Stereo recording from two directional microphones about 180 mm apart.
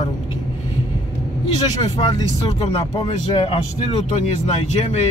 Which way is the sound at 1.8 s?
35° left (ahead or behind).